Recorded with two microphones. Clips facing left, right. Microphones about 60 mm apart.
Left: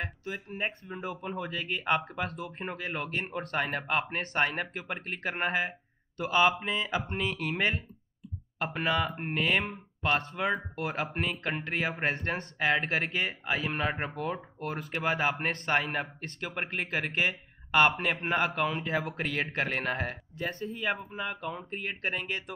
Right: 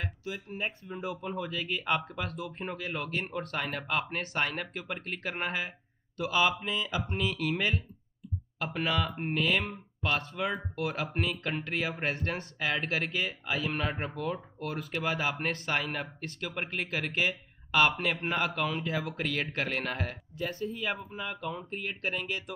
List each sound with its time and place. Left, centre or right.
0.0 s speech: left